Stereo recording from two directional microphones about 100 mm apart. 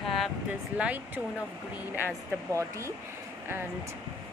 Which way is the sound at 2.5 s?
30° right (ahead or behind).